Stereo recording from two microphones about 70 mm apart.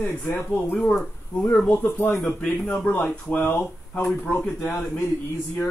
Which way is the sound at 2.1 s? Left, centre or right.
Centre.